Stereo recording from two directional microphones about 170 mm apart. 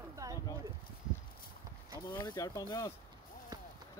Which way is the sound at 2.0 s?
25° left (ahead or behind).